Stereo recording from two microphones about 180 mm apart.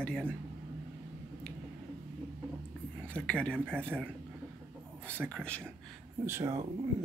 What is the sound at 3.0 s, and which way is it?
Speech, 5° left (ahead or behind).